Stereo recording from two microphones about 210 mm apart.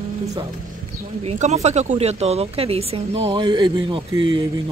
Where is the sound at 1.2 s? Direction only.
30° right (ahead or behind).